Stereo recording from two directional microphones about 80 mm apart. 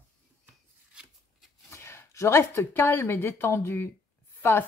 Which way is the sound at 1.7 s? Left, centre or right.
Left.